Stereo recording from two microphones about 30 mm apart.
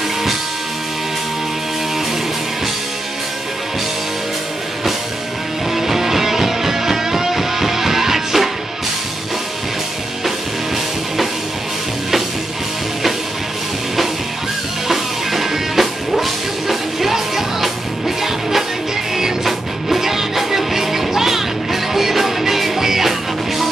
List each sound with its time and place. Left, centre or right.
5.8 s music: centre
14.9 s music: centre